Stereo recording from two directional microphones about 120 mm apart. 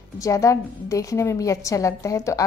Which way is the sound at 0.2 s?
25° left (ahead or behind).